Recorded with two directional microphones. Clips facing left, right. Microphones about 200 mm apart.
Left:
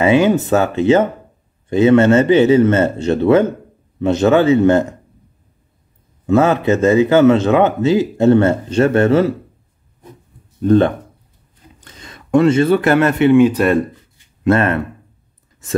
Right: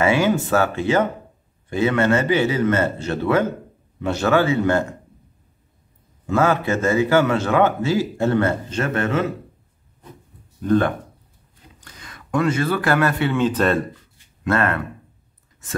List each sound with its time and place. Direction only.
0.0 s speech: 20° left (ahead or behind)
6.2 s speech: 20° left (ahead or behind)
10.6 s speech: 25° left (ahead or behind)